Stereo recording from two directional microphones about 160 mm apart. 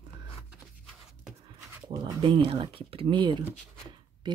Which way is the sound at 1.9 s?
35° right (ahead or behind).